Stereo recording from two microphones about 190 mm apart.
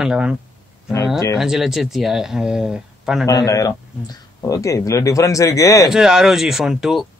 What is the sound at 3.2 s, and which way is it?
Speech, 20° left (ahead or behind).